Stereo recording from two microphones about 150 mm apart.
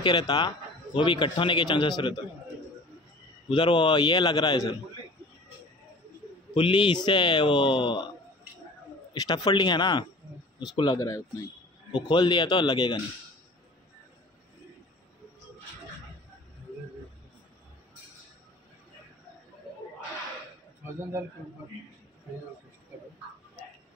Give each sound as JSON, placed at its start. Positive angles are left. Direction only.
{"t": 0.0, "sound": "a man's voice", "side_deg": 30}
{"t": 3.4, "sound": "speech", "side_deg": 30}
{"t": 6.5, "sound": "speech", "side_deg": 35}
{"t": 9.1, "sound": "a man's voice", "side_deg": 25}